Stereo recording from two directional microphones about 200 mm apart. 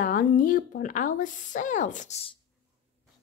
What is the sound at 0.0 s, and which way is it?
Speech, 40° left (ahead or behind).